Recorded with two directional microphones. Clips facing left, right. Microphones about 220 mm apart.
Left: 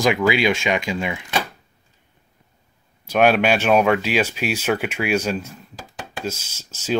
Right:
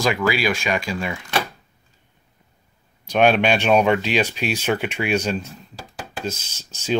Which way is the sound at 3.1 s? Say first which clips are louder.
Even; 5° left (ahead or behind).